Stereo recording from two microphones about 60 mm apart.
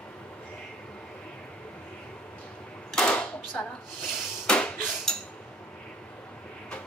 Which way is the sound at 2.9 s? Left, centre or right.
Centre.